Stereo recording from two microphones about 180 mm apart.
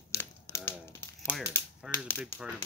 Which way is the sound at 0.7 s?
15° left (ahead or behind).